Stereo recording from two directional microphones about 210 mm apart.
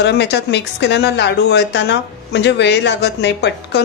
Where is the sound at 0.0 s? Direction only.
55° left (ahead or behind).